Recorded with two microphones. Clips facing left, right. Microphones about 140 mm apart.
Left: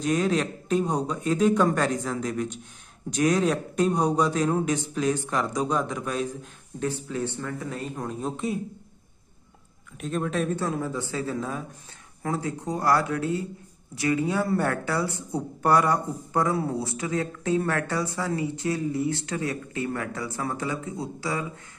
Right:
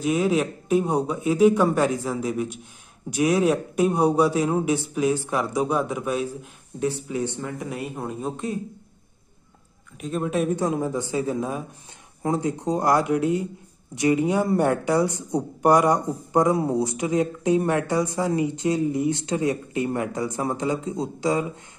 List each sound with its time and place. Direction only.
0.0 s a man's voice: 5° right (ahead or behind)
9.9 s a man's voice: centre (ahead or behind); by 21.5 s 20° right (ahead or behind)